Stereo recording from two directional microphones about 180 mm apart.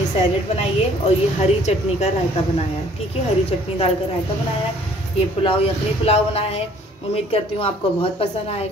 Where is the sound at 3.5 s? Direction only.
35° left (ahead or behind).